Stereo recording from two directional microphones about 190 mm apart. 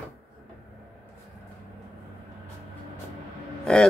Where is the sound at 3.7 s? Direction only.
5° left (ahead or behind).